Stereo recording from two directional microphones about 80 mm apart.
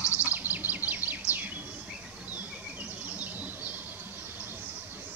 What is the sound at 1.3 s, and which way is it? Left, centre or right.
Bird, right.